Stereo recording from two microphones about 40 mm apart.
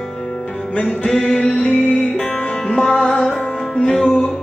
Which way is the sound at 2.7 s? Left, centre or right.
Centre.